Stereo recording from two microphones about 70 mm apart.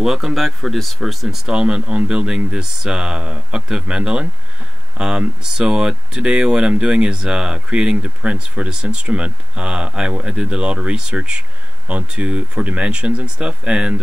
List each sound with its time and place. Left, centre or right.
0.0 s speech: centre